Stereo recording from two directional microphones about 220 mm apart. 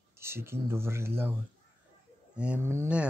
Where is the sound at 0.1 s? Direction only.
10° right (ahead or behind).